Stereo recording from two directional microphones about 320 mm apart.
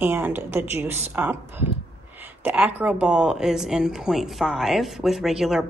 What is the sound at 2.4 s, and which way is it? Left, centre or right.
Speech, centre.